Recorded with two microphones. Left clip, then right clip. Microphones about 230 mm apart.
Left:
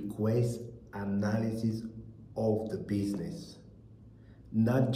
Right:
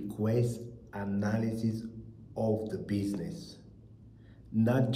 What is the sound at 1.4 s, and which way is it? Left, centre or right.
Speech, left.